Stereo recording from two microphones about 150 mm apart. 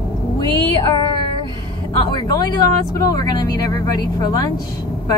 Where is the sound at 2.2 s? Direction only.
25° left (ahead or behind).